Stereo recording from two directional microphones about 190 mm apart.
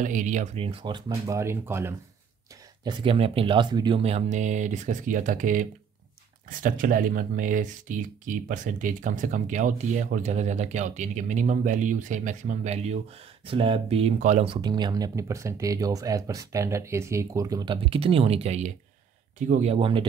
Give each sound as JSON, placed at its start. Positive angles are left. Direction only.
{"t": 0.0, "sound": "speech", "side_deg": -40}
{"t": 2.8, "sound": "speech", "side_deg": -25}